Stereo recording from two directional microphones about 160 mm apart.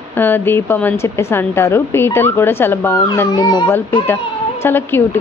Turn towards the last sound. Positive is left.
turn(degrees=15)  # may be behind; listen again after turning